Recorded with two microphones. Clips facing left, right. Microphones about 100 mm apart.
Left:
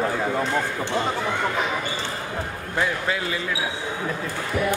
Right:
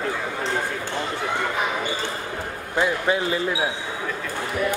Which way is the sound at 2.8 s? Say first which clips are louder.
Right 3 dB; 20° right (ahead or behind).